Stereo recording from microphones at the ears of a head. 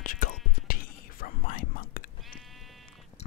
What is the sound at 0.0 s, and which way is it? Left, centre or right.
Whispering, left.